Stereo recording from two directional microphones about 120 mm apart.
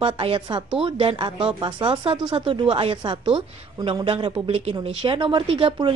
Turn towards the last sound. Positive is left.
turn(degrees=-45)  # may be behind; listen again after turning